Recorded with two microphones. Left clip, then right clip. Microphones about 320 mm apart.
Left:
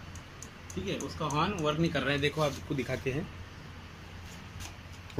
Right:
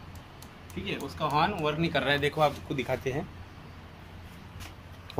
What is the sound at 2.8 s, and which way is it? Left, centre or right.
Speech, right.